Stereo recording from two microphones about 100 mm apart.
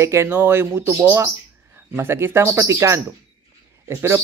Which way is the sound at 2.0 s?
25° right (ahead or behind).